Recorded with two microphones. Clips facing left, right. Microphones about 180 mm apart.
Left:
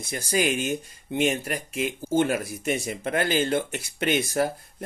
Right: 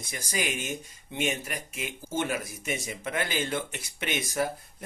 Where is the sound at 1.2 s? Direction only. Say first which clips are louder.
Left 6 dB; 55° left (ahead or behind).